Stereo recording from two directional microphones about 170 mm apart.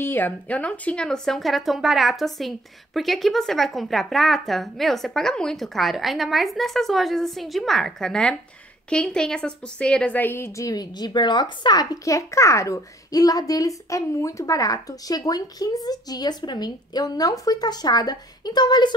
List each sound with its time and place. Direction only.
0.0 s a woman's voice: 10° left (ahead or behind)